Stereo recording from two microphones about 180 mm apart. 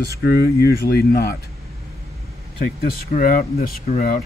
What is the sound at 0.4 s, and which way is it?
Speech, 60° left (ahead or behind).